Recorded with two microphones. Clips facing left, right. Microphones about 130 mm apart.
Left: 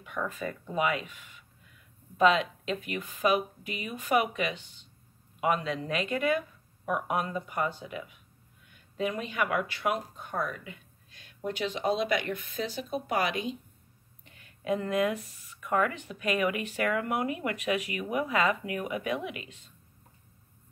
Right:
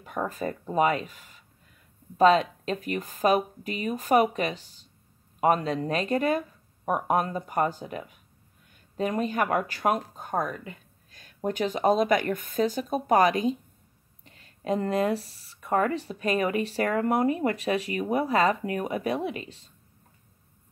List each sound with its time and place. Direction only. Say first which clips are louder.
0.0 s speech: right 4 dB; 40° right (ahead or behind)